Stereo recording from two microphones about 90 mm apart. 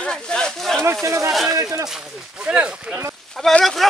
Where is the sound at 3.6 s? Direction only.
Centre (ahead or behind).